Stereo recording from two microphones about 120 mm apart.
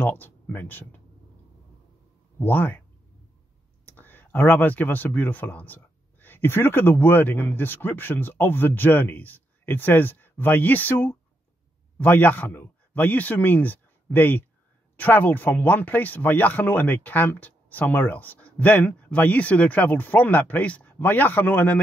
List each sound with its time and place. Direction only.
0.0 s speech: 15° left (ahead or behind)
2.3 s speech: 15° left (ahead or behind)
3.8 s a man's voice: 15° left (ahead or behind)